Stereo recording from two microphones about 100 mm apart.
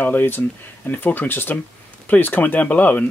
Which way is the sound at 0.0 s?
20° left (ahead or behind).